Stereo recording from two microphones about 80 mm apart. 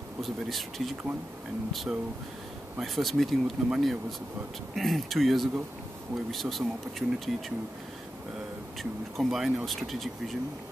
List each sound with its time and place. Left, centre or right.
0.2 s speech: centre
9.1 s speech: centre